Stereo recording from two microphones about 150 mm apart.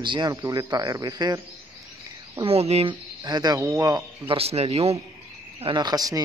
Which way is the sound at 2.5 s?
40° right (ahead or behind).